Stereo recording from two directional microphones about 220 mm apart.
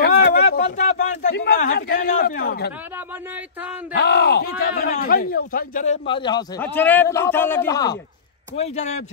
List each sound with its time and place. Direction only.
0.0 s a sound: 45° left (ahead or behind)
0.7 s a sound: 35° left (ahead or behind)
2.4 s speech: 45° left (ahead or behind)
3.9 s a man's voice: 50° left (ahead or behind)
6.0 s speech: 20° left (ahead or behind)
6.6 s a man's voice: 10° left (ahead or behind)
8.5 s a man's voice: 30° left (ahead or behind)